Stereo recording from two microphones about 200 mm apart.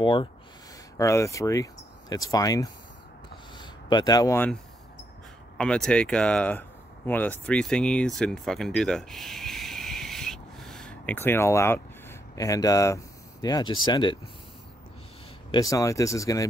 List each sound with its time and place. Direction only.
0.0 s speech: 25° left (ahead or behind)
0.9 s speech: 15° left (ahead or behind)
5.6 s speech: 5° left (ahead or behind); by 14.3 s 20° left (ahead or behind)
15.5 s speech: 15° left (ahead or behind)